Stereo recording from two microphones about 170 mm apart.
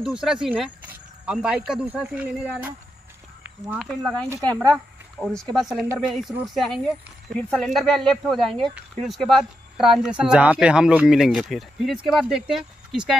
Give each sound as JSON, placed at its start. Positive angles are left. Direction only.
{"t": 0.0, "sound": "speech", "side_deg": -5}
{"t": 5.2, "sound": "speech", "side_deg": 0}